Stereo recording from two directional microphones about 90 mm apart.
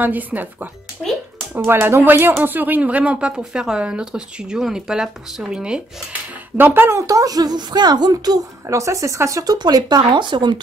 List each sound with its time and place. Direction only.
0.0 s speech: 20° right (ahead or behind)
1.0 s speech: 10° left (ahead or behind)
1.5 s speech: 25° right (ahead or behind); by 5.8 s 10° right (ahead or behind)
6.5 s speech: 25° right (ahead or behind)
7.0 s a woman's voice: 40° right (ahead or behind); by 10.5 s 60° right (ahead or behind)